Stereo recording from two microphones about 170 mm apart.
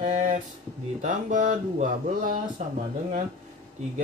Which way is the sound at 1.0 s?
45° right (ahead or behind).